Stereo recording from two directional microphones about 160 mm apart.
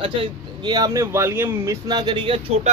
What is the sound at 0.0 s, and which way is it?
Speech, 30° right (ahead or behind).